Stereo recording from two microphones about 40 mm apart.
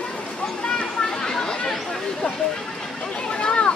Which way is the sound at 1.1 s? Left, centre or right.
Centre.